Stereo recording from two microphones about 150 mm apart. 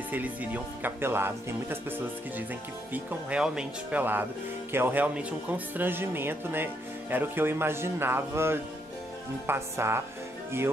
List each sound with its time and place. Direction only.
0.1 s speech: 10° right (ahead or behind)